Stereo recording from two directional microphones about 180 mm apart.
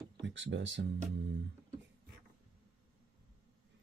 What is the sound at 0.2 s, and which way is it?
Speech, 90° right.